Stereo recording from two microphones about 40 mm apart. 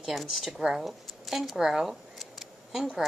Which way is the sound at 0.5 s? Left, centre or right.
Centre.